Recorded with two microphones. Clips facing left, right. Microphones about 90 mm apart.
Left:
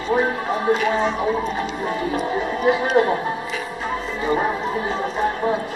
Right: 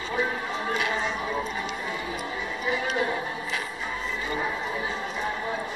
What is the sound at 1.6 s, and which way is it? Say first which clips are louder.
Music: left 8 dB; 50° left (ahead or behind).